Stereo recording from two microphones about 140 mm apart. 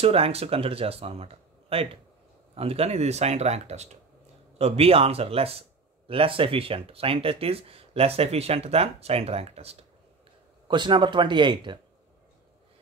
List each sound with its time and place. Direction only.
0.0 s speech: 45° right (ahead or behind)
10.7 s speech: 35° right (ahead or behind)